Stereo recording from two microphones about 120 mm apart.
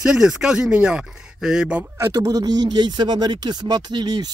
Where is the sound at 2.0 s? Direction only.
30° right (ahead or behind).